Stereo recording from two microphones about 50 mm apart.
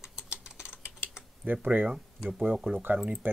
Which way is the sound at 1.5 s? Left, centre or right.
Right.